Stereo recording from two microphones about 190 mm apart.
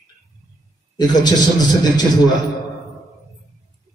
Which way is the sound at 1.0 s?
20° left (ahead or behind).